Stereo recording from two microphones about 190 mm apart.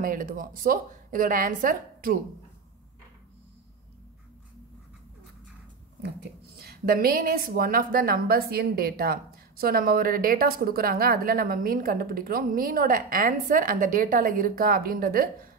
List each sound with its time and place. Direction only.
0.0 s a woman's voice: 50° right (ahead or behind)
6.4 s a woman's voice: 55° right (ahead or behind)